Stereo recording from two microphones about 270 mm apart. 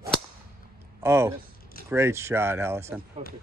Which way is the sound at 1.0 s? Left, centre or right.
Centre.